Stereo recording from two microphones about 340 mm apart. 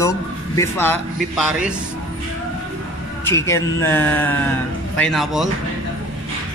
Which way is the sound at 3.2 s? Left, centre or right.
Centre.